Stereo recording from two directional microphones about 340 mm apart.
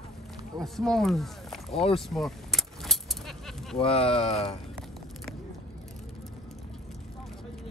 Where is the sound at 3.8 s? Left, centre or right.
Centre.